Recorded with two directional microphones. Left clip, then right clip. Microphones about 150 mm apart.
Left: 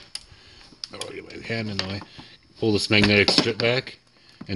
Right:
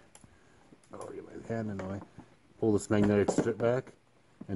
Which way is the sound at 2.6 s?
Centre (ahead or behind).